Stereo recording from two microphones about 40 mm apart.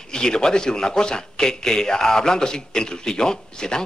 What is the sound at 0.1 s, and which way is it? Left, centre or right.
A man's voice, centre.